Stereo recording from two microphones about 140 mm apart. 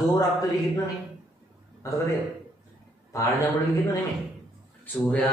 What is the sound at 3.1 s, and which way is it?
Speech, 25° left (ahead or behind).